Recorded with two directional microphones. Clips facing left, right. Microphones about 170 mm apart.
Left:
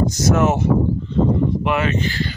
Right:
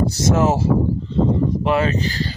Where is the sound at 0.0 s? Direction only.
30° right (ahead or behind).